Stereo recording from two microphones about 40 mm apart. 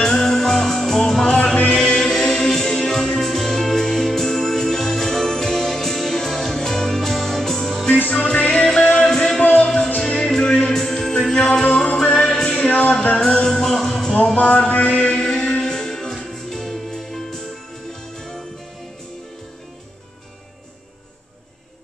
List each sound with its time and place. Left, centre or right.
0.0 s music: centre
8.1 s music: left
9.4 s music: left
10.0 s music: centre
11.5 s music: left
12.3 s music: centre
14.3 s mantra: left
15.2 s music: centre